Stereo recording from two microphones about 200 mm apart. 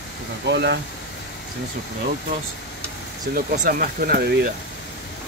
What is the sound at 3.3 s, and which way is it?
Speech, 45° right (ahead or behind).